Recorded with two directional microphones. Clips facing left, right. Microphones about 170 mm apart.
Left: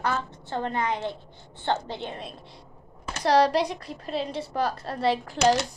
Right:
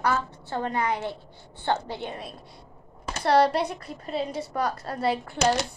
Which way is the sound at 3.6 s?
30° left (ahead or behind).